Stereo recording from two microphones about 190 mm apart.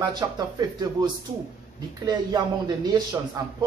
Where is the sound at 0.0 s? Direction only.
20° right (ahead or behind).